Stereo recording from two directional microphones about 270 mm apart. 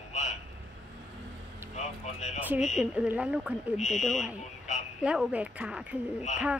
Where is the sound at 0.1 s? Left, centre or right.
Left.